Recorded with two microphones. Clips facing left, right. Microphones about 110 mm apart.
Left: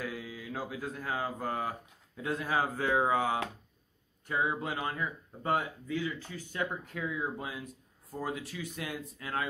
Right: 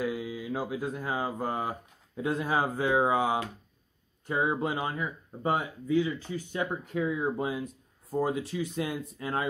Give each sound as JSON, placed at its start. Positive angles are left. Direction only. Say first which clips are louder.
{"t": 0.0, "sound": "speech", "louder": "right 7 dB", "side_deg": -20}